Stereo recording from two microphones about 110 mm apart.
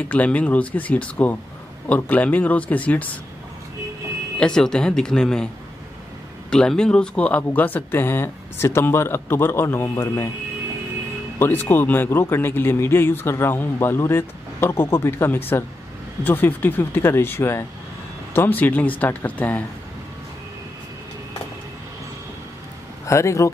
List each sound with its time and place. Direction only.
0.1 s speech: 15° left (ahead or behind)
4.4 s speech: 5° left (ahead or behind)
6.5 s a man's voice: 5° left (ahead or behind)
11.3 s a man's voice: 20° left (ahead or behind)
23.0 s a man's voice: 25° left (ahead or behind)